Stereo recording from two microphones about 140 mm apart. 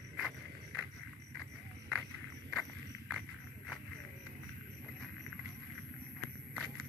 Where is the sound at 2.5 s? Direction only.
Centre (ahead or behind).